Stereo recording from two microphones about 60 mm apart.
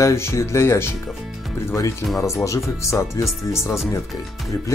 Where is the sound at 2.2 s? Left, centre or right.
Left.